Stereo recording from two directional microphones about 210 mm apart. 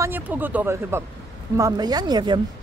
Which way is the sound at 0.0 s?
10° right (ahead or behind).